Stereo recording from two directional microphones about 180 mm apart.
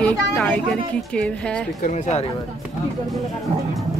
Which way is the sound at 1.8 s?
45° left (ahead or behind).